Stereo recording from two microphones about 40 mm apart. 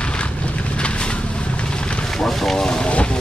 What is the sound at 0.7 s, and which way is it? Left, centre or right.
Vehicle, left.